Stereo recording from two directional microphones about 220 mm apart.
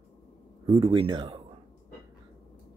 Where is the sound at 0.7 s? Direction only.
20° right (ahead or behind).